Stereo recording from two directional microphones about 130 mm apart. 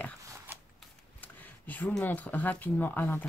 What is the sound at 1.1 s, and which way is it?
Speech, 15° left (ahead or behind).